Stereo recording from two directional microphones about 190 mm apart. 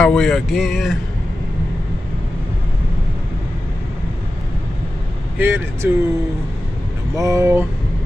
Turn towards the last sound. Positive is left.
turn(degrees=-15)  # may be behind; listen again after turning